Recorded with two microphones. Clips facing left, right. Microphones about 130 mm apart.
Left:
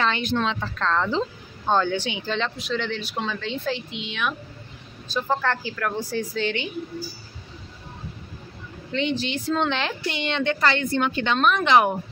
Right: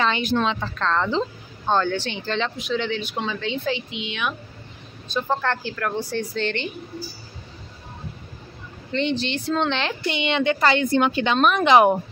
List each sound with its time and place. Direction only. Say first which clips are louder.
0.0 s speech: right 2 dB; 5° right (ahead or behind)
9.2 s a woman's voice: right 1 dB; 5° left (ahead or behind); by 11.9 s 15° right (ahead or behind)